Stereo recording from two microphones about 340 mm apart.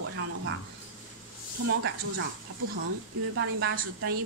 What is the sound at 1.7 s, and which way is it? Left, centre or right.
A woman's voice, right.